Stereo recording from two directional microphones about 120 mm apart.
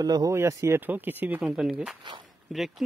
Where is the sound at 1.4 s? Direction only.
5° right (ahead or behind).